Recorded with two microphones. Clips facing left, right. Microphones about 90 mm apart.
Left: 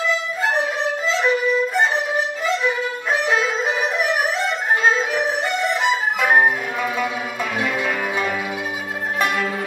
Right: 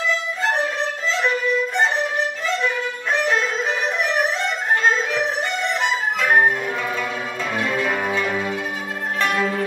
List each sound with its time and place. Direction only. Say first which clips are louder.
1.2 s music: left 2 dB; 5° left (ahead or behind)
7.5 s change ringing: right 1 dB; 10° left (ahead or behind)
8.1 s music: right 1 dB; 10° left (ahead or behind)